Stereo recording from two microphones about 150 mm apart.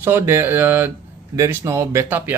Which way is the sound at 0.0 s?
15° right (ahead or behind).